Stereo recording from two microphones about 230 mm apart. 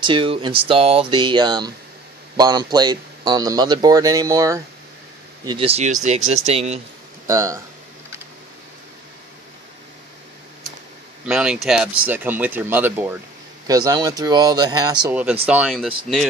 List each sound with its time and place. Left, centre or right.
0.0 s speech: right
7.2 s speech: centre
11.2 s speech: centre
15.4 s speech: centre